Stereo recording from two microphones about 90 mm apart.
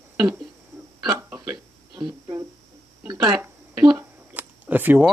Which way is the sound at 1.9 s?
55° right (ahead or behind).